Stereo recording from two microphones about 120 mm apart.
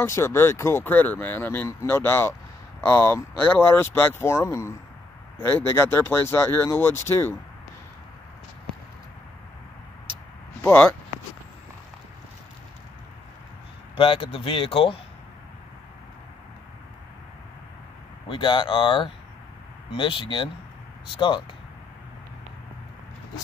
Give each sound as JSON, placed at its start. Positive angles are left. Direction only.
{"t": 0.0, "sound": "speech", "side_deg": 25}
{"t": 10.6, "sound": "speech", "side_deg": 15}
{"t": 13.9, "sound": "speech", "side_deg": 50}
{"t": 18.3, "sound": "speech", "side_deg": 40}